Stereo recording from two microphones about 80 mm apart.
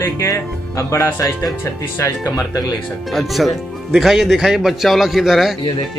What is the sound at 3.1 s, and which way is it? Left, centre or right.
Speech, centre.